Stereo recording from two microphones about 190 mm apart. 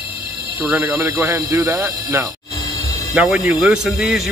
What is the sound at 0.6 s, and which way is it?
Speech, 5° right (ahead or behind).